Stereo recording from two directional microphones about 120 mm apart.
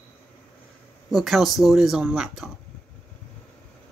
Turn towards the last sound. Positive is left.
turn(degrees=-5)  # may be behind; listen again after turning